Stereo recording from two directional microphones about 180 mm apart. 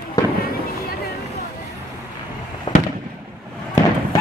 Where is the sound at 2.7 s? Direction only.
30° left (ahead or behind).